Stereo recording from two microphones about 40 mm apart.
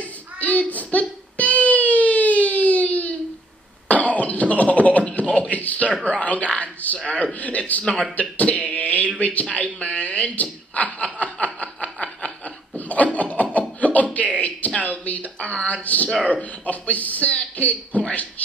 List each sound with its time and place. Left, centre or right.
0.4 s a sound: left
6.0 s speech: left
7.8 s a man's voice: left
8.2 s a sound: left
9.2 s a man's voice: left
11.2 s snicker: left
12.7 s laughter: left
14.1 s music: left
14.8 s speech: left
15.5 s a man's voice: left
15.8 s speech: left